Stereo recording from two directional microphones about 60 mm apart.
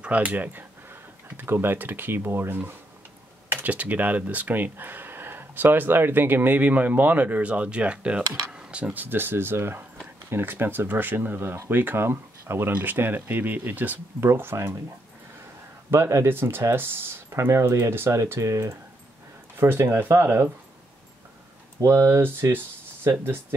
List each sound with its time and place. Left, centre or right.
0.0 s speech: right
3.5 s speech: right
8.5 s a sound: centre
8.9 s speech: right
14.2 s speech: right
15.9 s speech: right
19.6 s speech: right
21.8 s speech: right
22.1 s speech: right